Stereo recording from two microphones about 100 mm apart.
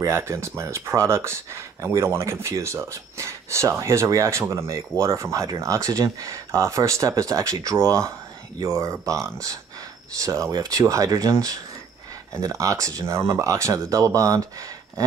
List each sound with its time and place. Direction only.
0.0 s speech: 30° right (ahead or behind)